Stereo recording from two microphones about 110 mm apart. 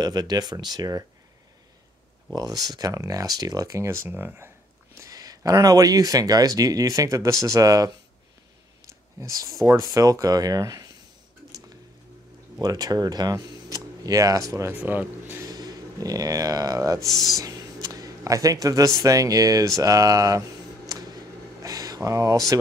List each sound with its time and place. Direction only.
0.0 s speech: 35° right (ahead or behind)
2.3 s speech: 35° right (ahead or behind); by 4.5 s 20° right (ahead or behind)
4.9 s speech: 30° right (ahead or behind)
9.2 s speech: 30° right (ahead or behind)
12.5 s speech: 35° right (ahead or behind)
14.7 s speech: 15° right (ahead or behind)
15.4 s speech: 35° right (ahead or behind)
19.8 s a sound: 30° right (ahead or behind)